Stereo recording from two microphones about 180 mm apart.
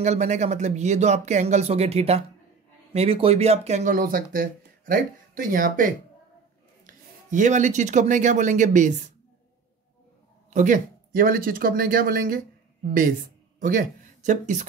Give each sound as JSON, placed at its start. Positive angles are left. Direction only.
{"t": 0.0, "sound": "speech", "side_deg": -40}
{"t": 7.2, "sound": "speech", "side_deg": -45}
{"t": 10.5, "sound": "speech", "side_deg": -45}